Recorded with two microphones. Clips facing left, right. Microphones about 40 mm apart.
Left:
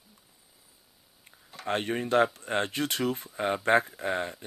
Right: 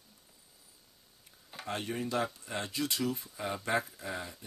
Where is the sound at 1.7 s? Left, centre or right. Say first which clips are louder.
Left 7 dB; left.